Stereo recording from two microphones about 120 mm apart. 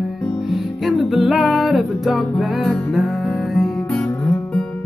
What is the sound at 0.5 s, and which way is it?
Music, centre (ahead or behind).